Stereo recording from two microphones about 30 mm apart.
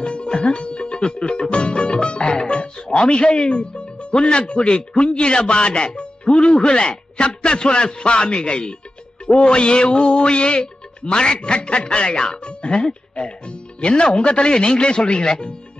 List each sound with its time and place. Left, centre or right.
0.0 s music: left
0.4 s speech: left